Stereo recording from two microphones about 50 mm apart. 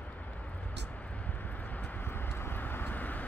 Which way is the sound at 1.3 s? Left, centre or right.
Left.